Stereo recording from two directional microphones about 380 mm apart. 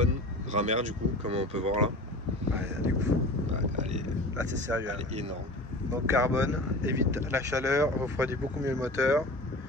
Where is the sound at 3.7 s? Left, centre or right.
Centre.